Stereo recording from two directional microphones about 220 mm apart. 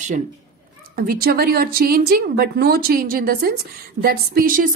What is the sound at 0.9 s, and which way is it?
A woman's voice, 45° right (ahead or behind).